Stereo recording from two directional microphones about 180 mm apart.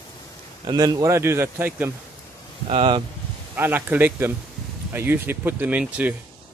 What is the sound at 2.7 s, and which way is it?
Speech, 30° right (ahead or behind).